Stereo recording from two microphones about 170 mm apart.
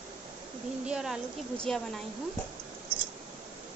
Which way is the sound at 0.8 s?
5° right (ahead or behind).